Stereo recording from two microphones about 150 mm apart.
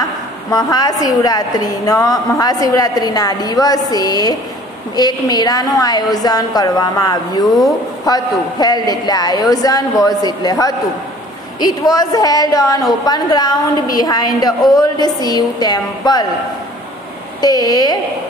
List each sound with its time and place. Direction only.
0.5 s a woman's voice: 25° left (ahead or behind)
11.8 s a woman's voice: 25° left (ahead or behind)
17.4 s a woman's voice: 25° left (ahead or behind)